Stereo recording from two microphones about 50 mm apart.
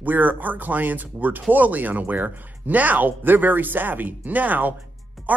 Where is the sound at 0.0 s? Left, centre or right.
Right.